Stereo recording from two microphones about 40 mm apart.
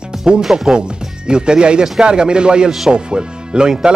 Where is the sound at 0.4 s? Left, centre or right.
Centre.